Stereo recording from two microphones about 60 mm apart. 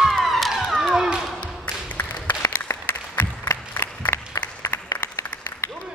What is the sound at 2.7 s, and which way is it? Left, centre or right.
Applause, left.